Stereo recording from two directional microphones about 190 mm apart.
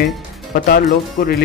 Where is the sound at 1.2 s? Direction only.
50° left (ahead or behind).